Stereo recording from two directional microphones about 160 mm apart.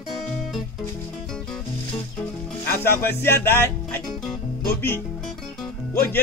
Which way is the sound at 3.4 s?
15° left (ahead or behind).